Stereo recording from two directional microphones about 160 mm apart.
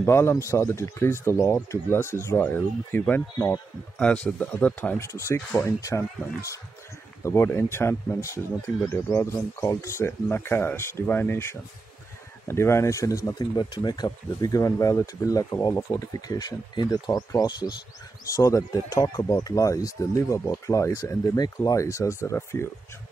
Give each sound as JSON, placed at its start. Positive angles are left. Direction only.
{"t": 0.0, "sound": "speech", "side_deg": 15}
{"t": 4.0, "sound": "speech", "side_deg": 5}
{"t": 7.2, "sound": "speech", "side_deg": 15}